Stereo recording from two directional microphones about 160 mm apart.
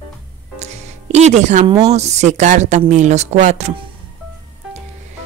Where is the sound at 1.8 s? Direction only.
45° right (ahead or behind).